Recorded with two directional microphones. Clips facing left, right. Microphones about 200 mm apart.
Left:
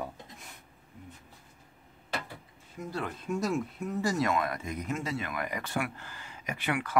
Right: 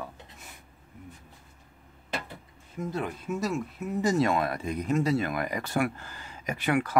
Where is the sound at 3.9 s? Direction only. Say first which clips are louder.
Right 4 dB; 25° right (ahead or behind).